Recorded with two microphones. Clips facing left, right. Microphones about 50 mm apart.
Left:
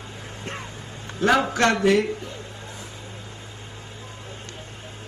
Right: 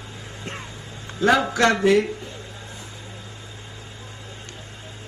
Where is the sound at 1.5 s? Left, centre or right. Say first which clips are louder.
Right 1 dB; left.